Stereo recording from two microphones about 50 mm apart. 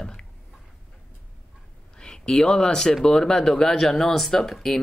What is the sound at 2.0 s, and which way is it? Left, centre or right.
Speech, centre.